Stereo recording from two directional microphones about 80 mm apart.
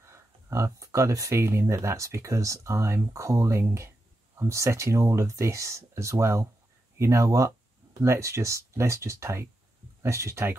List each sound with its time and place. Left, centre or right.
0.0 s speech: right